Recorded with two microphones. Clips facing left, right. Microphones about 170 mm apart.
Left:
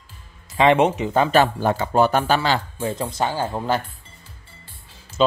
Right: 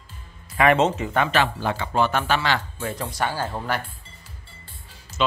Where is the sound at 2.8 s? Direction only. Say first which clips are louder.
Left 3 dB; 20° left (ahead or behind).